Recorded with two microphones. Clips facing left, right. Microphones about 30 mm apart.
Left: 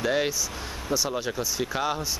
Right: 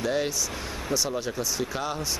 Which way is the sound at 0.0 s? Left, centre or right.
Centre.